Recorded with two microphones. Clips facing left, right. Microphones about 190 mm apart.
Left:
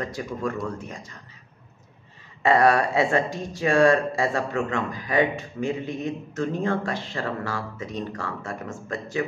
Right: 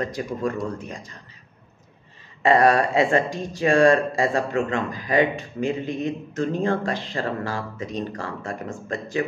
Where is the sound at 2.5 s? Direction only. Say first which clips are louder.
Right 2 dB; 35° right (ahead or behind).